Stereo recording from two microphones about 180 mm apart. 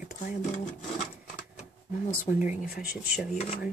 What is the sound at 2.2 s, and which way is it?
Speech, 45° left (ahead or behind).